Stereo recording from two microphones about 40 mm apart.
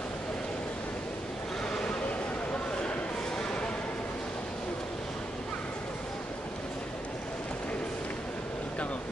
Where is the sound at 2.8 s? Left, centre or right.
Left.